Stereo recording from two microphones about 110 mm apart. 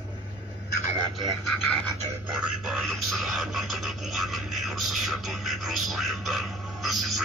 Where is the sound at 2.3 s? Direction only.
5° right (ahead or behind).